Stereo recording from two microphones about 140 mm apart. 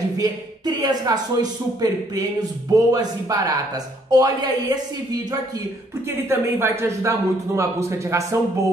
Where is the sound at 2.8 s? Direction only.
25° right (ahead or behind).